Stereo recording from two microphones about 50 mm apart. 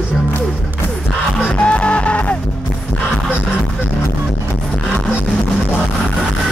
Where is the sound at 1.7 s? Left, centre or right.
Left.